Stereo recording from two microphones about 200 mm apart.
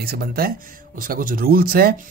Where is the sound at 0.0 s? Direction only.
50° right (ahead or behind).